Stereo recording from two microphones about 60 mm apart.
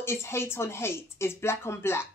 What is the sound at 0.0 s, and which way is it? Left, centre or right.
Speech, left.